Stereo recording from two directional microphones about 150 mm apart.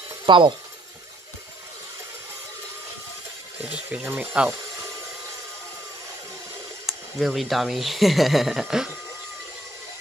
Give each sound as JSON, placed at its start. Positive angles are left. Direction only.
{"t": 0.3, "sound": "speech", "side_deg": -35}
{"t": 3.6, "sound": "speech", "side_deg": -10}
{"t": 6.9, "sound": "speech", "side_deg": 0}